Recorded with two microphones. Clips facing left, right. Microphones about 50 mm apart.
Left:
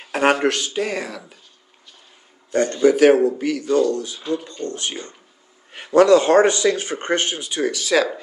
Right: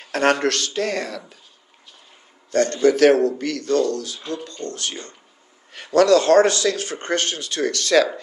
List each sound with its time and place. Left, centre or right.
0.0 s speech: centre
2.5 s speech: centre